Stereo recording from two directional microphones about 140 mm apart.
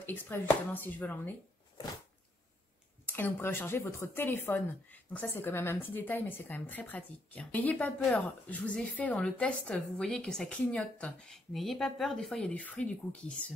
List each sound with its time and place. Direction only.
0.0 s a woman's voice: 15° left (ahead or behind)
3.1 s a woman's voice: 15° left (ahead or behind)